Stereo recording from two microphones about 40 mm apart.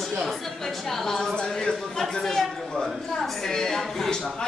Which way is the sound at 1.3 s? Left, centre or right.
Centre.